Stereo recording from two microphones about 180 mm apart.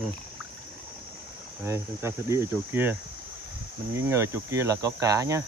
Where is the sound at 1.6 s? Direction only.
15° right (ahead or behind).